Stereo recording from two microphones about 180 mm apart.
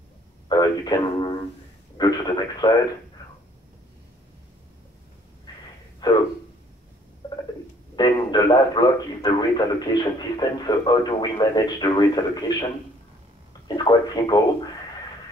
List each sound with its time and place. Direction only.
0.5 s a man's voice: 25° left (ahead or behind)
5.5 s a sound: 25° left (ahead or behind)
6.0 s speech: 25° left (ahead or behind)
7.9 s a man's voice: 25° left (ahead or behind)
13.7 s speech: 20° left (ahead or behind)